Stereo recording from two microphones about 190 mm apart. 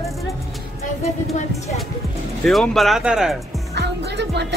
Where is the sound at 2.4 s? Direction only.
Centre (ahead or behind).